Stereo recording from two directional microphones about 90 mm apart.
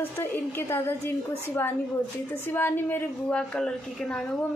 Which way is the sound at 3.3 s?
10° left (ahead or behind).